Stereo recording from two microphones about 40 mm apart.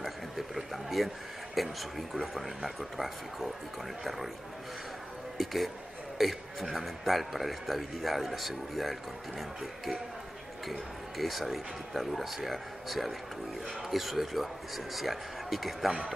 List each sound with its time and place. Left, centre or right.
0.6 s a man's voice: centre
5.4 s a man's voice: centre
10.7 s a man's voice: centre